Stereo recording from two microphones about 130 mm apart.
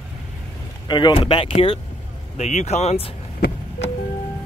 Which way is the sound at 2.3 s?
60° left (ahead or behind).